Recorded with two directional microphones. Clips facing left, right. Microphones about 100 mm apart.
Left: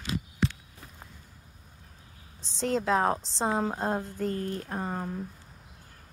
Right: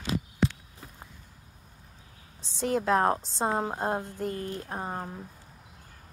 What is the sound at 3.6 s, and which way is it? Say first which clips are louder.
Speech: even; 15° right (ahead or behind).